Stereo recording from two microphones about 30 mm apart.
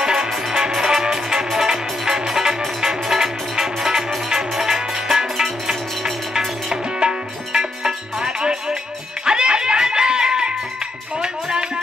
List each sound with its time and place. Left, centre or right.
0.0 s music: centre
6.7 s music: right